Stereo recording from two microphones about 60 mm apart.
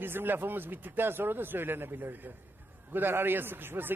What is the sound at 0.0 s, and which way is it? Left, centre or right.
A man's voice, right.